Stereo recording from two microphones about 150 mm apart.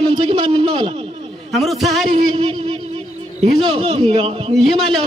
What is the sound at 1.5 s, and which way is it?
Speech, centre (ahead or behind).